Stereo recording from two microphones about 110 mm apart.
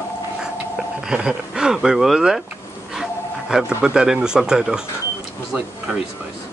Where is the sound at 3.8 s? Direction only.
5° right (ahead or behind).